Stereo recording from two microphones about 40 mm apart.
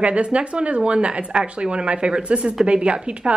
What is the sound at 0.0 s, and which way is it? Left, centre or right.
A woman's voice, right.